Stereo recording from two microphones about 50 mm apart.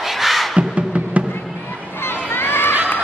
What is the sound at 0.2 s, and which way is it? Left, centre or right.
Music, centre.